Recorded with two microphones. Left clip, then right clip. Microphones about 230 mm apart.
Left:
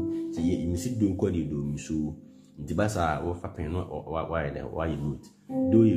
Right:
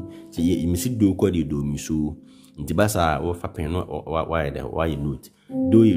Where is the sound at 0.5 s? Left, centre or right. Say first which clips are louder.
Right 10 dB; right.